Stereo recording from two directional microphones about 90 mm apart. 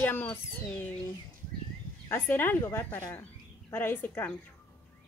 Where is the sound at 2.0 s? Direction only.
25° left (ahead or behind).